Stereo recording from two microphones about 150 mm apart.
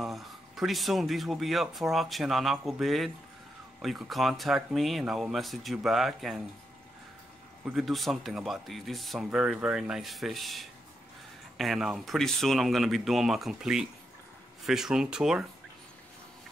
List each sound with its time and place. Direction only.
0.0 s speech: centre (ahead or behind)
7.6 s speech: centre (ahead or behind)